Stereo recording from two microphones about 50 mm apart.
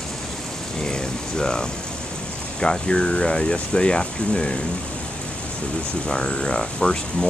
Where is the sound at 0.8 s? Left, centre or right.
Centre.